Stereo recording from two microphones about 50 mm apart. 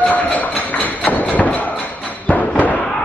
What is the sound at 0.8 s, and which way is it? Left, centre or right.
Music, left.